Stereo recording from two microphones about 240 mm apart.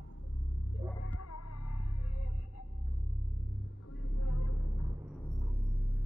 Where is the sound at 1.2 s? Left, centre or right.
Left.